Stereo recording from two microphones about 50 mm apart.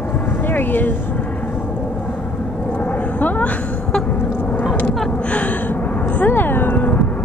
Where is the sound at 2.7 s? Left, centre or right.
Left.